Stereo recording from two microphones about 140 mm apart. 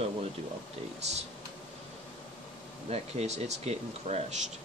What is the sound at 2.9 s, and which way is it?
Speech, 50° right (ahead or behind).